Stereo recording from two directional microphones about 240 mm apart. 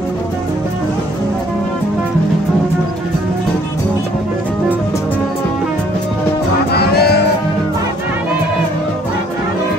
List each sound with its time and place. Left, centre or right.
6.7 s music: left